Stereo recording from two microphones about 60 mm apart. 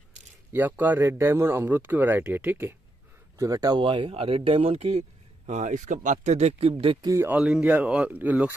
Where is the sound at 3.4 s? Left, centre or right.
Right.